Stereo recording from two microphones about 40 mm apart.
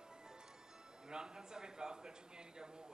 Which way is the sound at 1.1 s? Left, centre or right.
Centre.